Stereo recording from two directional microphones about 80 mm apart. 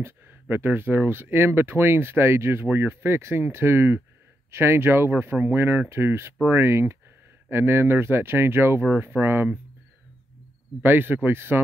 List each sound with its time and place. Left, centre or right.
0.0 s speech: right
10.8 s speech: right